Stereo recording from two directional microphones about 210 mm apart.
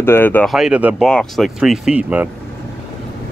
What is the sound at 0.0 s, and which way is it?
Speech, 10° left (ahead or behind).